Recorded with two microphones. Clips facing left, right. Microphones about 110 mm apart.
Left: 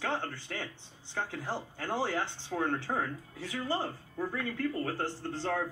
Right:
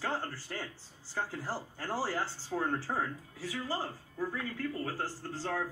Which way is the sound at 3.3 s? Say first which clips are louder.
Left 3 dB; 25° left (ahead or behind).